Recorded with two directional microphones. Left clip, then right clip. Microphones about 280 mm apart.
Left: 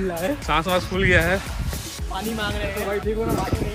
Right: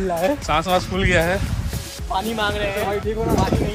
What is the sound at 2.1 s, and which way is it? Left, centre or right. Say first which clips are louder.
Speech: right 6 dB; right.